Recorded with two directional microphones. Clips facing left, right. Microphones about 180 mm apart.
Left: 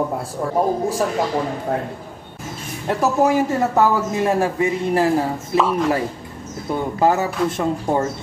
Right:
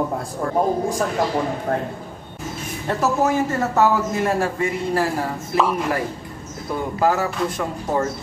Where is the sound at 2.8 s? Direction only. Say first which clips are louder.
Left 3 dB; 15° left (ahead or behind).